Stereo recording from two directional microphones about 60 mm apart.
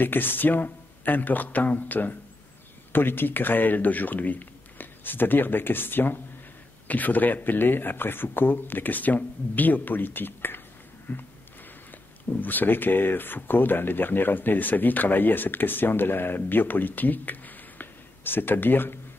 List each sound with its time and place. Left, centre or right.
0.0 s speech: left
12.4 s speech: left